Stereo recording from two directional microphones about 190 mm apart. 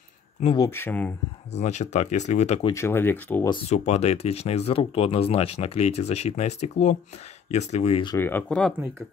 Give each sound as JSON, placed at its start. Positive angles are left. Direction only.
{"t": 0.6, "sound": "speech", "side_deg": 10}
{"t": 1.6, "sound": "speech", "side_deg": 35}
{"t": 2.7, "sound": "speech", "side_deg": 10}
{"t": 3.6, "sound": "speech", "side_deg": 35}
{"t": 8.2, "sound": "speech", "side_deg": 10}